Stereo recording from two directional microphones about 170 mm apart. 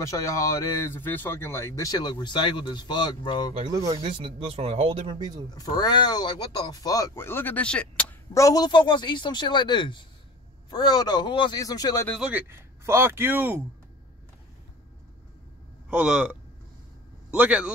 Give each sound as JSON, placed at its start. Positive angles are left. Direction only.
{"t": 0.0, "sound": "speech", "side_deg": 20}
{"t": 3.9, "sound": "speech", "side_deg": -30}
{"t": 5.5, "sound": "speech", "side_deg": 25}
{"t": 8.3, "sound": "speech", "side_deg": 20}
{"t": 12.1, "sound": "speech", "side_deg": -5}
{"t": 15.9, "sound": "speech", "side_deg": -5}